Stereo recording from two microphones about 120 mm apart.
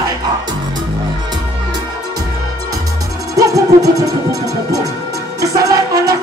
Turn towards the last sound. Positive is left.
turn(degrees=-30)  # may be behind; listen again after turning